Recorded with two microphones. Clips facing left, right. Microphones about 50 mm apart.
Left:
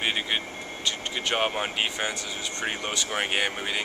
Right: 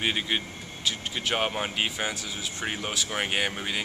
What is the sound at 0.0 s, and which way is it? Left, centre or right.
Speech, centre.